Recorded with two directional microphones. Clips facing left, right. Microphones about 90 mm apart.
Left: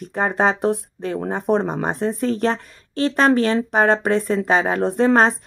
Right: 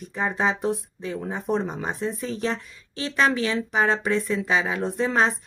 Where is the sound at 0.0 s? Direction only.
55° left (ahead or behind).